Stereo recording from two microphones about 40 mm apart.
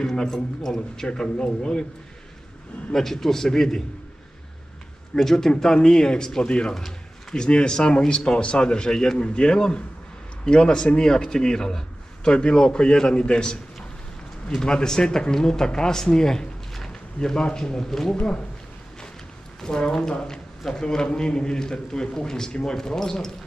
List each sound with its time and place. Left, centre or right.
0.0 s a man's voice: centre
2.9 s speech: centre
5.1 s speech: centre
6.7 s a sound: centre
7.3 s a man's voice: left
14.6 s speech: centre
18.1 s a man's voice: left
19.6 s speech: centre